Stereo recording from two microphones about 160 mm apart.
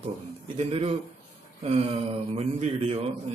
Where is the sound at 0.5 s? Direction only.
40° right (ahead or behind).